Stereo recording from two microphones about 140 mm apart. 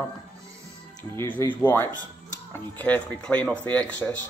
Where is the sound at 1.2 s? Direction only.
15° left (ahead or behind).